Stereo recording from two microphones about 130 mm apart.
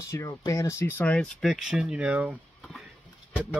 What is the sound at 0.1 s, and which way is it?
Speech, 25° left (ahead or behind).